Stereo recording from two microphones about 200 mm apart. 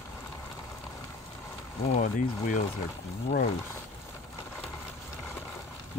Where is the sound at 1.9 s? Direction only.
40° left (ahead or behind).